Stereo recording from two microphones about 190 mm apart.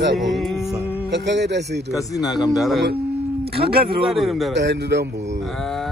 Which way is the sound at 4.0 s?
Centre (ahead or behind).